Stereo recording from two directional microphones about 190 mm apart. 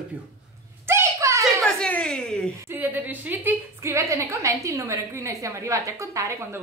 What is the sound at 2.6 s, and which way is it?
A woman's voice, 10° right (ahead or behind).